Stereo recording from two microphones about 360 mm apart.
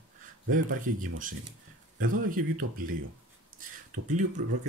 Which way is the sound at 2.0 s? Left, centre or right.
Right.